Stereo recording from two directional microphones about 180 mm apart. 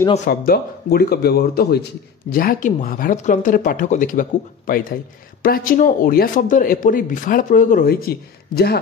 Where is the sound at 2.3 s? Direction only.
50° left (ahead or behind).